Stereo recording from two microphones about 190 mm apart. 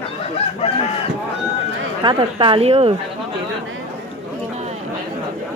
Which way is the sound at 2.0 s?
25° right (ahead or behind).